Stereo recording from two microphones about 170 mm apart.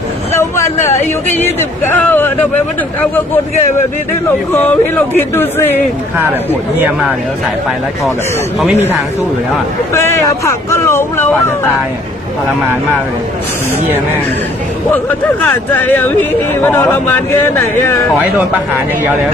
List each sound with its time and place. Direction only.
0.3 s a man's voice: 15° left (ahead or behind)
4.6 s a man's voice: 10° left (ahead or behind)
9.9 s a man's voice: 15° left (ahead or behind)
15.4 s a man's voice: 10° left (ahead or behind)